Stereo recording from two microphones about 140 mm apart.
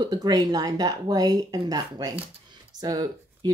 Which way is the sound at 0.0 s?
30° right (ahead or behind).